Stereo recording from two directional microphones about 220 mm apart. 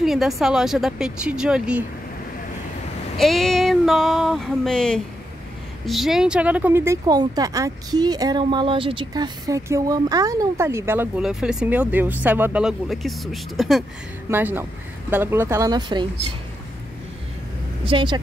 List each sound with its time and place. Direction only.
0.0 s speech: centre (ahead or behind)
3.2 s speech: centre (ahead or behind); by 16.1 s 20° right (ahead or behind)
17.8 s speech: 20° right (ahead or behind)